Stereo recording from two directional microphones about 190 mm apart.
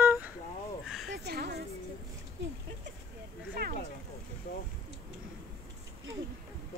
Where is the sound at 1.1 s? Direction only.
60° right (ahead or behind).